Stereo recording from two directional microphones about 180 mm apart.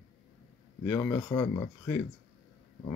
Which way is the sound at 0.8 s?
10° left (ahead or behind).